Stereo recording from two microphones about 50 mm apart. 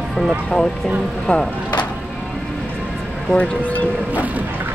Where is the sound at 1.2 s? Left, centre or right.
Centre.